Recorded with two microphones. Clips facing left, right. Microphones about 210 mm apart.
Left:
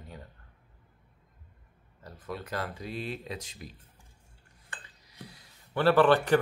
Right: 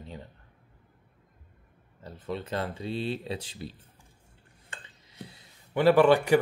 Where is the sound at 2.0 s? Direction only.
25° right (ahead or behind).